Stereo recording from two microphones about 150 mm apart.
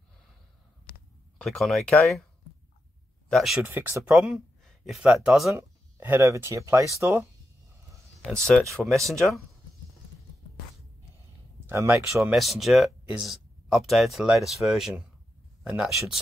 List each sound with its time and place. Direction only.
1.4 s speech: centre (ahead or behind)
3.3 s speech: centre (ahead or behind)
3.6 s speech: 15° right (ahead or behind)
5.6 s speech: 15° right (ahead or behind)
8.2 s speech: 5° left (ahead or behind)
11.6 s speech: 20° right (ahead or behind)
12.2 s speech: centre (ahead or behind)